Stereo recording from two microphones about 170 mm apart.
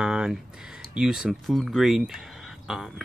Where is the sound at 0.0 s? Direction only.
5° right (ahead or behind).